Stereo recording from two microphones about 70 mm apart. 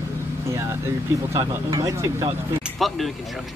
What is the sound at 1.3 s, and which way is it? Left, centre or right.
Speech, right.